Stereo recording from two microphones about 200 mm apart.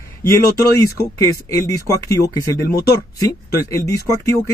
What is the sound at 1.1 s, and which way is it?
Speech, 15° left (ahead or behind).